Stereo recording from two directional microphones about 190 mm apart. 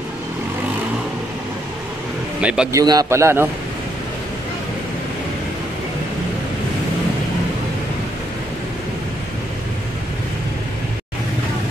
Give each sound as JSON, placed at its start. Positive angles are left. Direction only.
{"t": 2.4, "sound": "a man's voice", "side_deg": -5}
{"t": 2.7, "sound": "a man's voice", "side_deg": -20}